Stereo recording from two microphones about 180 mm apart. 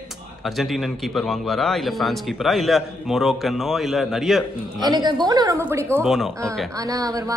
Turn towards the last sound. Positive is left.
turn(degrees=-20)  # may be behind; listen again after turning